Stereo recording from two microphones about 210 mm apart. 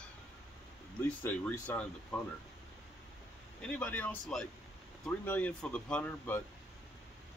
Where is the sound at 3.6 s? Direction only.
5° left (ahead or behind).